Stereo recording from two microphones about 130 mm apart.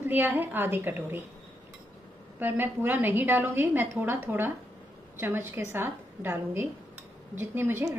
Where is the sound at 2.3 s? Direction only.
15° right (ahead or behind).